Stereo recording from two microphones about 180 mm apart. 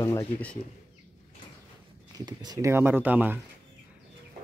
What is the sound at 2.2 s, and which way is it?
Speech, 20° right (ahead or behind).